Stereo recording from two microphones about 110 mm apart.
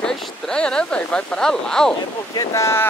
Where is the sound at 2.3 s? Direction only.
25° left (ahead or behind).